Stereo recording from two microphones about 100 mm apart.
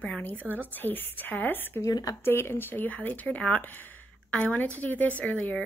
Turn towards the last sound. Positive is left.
turn(degrees=10)  # may be behind; listen again after turning